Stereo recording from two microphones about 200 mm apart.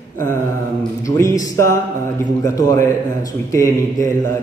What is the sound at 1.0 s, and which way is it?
A man's voice, 15° left (ahead or behind).